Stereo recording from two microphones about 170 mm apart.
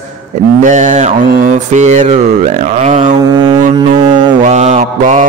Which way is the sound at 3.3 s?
25° right (ahead or behind).